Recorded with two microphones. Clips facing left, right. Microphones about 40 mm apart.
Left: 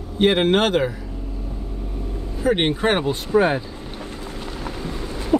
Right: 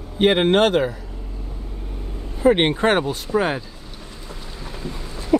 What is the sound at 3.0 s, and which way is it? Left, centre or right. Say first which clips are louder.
Speech: left 2 dB; left.